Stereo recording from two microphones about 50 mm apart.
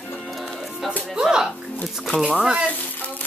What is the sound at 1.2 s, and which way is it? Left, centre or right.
Speech, centre.